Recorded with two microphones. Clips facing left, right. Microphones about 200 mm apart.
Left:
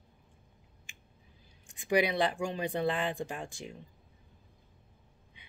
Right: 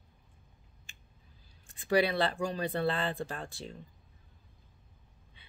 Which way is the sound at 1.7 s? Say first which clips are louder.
Right 1 dB; 15° left (ahead or behind).